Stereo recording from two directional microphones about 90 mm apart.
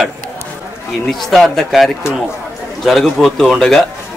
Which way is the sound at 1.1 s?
Centre (ahead or behind).